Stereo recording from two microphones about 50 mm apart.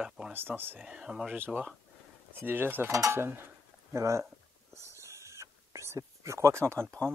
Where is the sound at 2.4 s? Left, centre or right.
Right.